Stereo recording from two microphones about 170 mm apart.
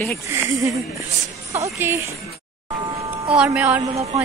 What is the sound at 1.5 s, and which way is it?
Speech, 20° right (ahead or behind).